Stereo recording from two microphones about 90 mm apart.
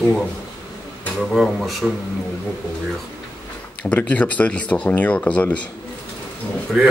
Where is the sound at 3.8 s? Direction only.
15° left (ahead or behind).